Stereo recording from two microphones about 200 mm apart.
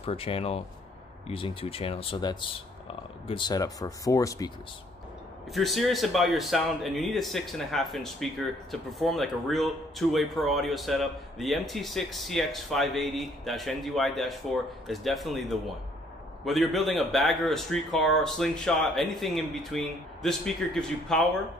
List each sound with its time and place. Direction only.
0.0 s speech: 30° left (ahead or behind)
5.5 s speech: centre (ahead or behind)